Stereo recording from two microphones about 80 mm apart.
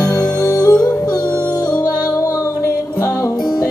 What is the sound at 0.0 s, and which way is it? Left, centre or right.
Music, left.